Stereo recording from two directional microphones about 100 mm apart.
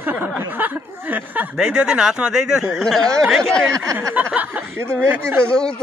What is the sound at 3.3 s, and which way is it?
Speech, 5° left (ahead or behind).